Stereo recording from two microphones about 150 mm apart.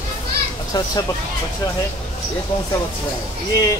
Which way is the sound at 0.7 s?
30° left (ahead or behind).